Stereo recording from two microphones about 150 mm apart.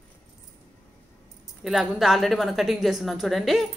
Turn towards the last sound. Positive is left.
turn(degrees=0)  # may be behind; listen again after turning